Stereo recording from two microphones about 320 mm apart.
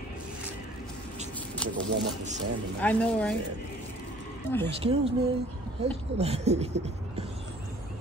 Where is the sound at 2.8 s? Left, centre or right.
Centre.